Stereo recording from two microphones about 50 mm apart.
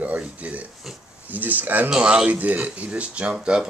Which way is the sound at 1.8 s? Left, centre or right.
Centre.